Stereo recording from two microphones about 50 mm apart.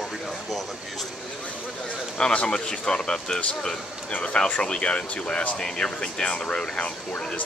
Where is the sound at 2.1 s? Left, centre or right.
Centre.